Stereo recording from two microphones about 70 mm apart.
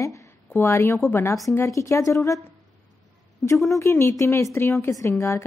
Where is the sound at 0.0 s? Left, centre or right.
Left.